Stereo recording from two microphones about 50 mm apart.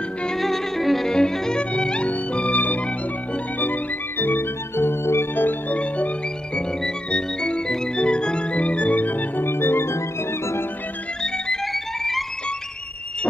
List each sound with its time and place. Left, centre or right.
0.4 s violin: centre
1.6 s music: left
5.8 s music: left
9.5 s music: left
9.9 s music: left
11.2 s music: centre
11.6 s music: centre